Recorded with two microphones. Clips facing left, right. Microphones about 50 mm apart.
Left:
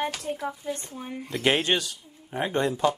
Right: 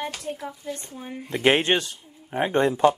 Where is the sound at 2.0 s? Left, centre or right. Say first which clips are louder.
Right 2 dB; centre.